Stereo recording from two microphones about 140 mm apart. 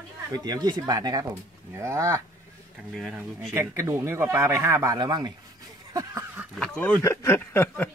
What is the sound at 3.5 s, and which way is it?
Speech, 20° right (ahead or behind).